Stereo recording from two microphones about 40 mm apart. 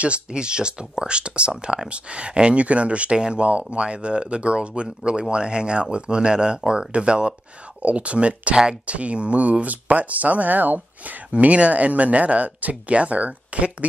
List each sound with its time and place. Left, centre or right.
0.0 s speech: right
3.4 s speech: right